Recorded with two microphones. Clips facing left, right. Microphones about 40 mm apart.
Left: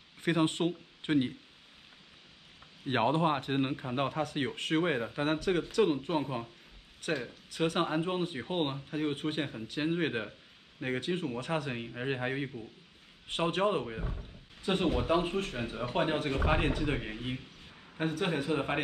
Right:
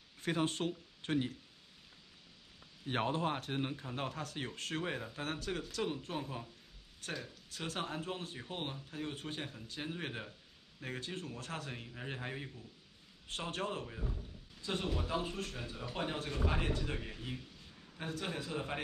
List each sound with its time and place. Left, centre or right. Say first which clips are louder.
0.2 s speech: left 6 dB; left
2.8 s a man's voice: left 7 dB; left